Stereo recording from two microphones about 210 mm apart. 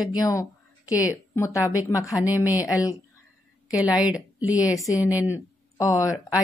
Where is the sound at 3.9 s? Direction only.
5° right (ahead or behind).